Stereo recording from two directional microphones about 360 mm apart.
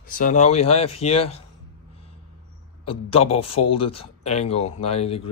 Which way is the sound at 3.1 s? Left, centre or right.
Centre.